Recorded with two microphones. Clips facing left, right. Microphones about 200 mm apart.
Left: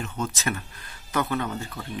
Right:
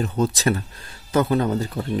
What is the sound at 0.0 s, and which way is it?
Speech, 35° right (ahead or behind).